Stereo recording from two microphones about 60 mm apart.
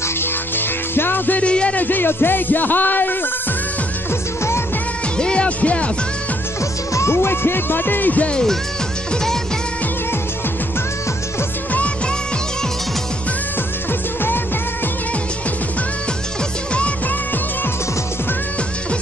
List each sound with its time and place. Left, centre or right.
0.2 s music: left
1.4 s speech: centre
5.1 s music: centre
6.9 s speech: left; by 8.5 s centre